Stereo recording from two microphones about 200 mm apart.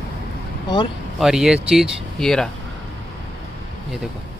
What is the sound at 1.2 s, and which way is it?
Speech, 5° right (ahead or behind).